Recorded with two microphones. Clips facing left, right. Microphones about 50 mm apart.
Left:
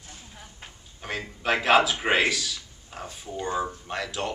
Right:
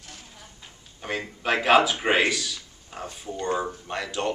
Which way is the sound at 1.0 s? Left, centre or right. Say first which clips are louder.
Right 1 dB; centre.